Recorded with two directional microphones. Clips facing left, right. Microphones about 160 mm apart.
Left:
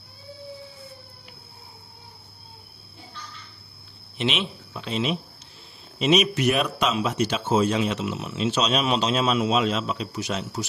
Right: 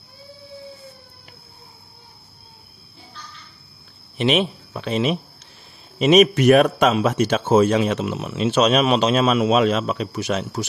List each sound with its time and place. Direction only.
4.2 s a man's voice: 50° right (ahead or behind)